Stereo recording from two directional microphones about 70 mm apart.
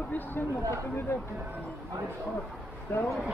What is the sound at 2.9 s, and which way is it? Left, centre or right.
Speech, left.